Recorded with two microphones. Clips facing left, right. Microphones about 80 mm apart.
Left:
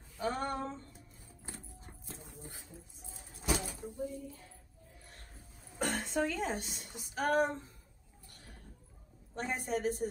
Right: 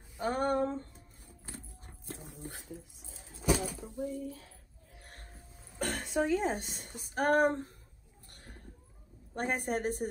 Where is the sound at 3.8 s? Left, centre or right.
Right.